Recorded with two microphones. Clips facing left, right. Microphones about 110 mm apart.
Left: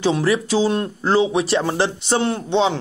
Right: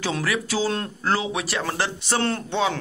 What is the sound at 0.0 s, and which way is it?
Speech, 25° left (ahead or behind).